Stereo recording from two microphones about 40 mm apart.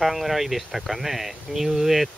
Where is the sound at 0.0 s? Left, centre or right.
Centre.